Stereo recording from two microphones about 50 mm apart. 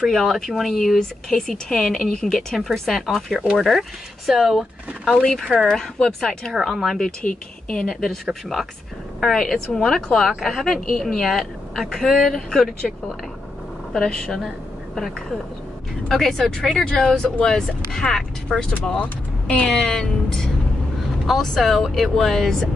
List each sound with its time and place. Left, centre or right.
0.1 s speech: centre
5.5 s speech: centre
5.9 s speech: centre
6.5 s speech: centre
8.0 s speech: centre
13.9 s speech: centre
16.1 s speech: centre